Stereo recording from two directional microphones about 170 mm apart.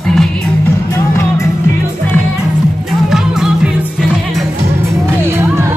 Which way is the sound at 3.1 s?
5° right (ahead or behind).